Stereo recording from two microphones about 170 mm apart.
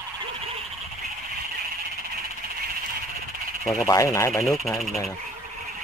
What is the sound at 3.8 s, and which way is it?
Speech, 20° left (ahead or behind).